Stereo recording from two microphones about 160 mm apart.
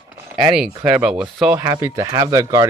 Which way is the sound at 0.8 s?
10° right (ahead or behind).